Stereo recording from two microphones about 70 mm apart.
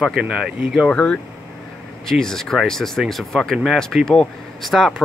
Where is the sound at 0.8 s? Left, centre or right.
Centre.